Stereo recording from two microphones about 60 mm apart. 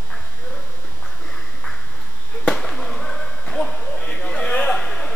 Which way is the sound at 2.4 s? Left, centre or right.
Centre.